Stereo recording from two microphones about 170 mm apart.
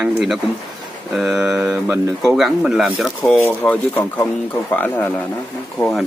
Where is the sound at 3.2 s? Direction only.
10° left (ahead or behind).